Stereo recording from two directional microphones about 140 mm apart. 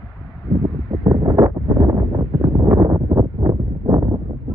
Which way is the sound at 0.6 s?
25° right (ahead or behind).